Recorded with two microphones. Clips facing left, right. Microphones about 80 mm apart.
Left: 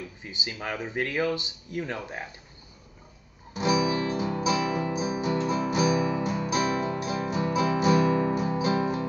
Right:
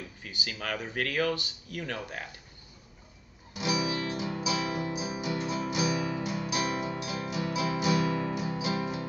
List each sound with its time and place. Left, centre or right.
0.2 s speech: left
3.5 s music: left